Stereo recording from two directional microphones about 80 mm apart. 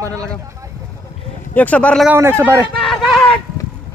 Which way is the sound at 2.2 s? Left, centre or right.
Right.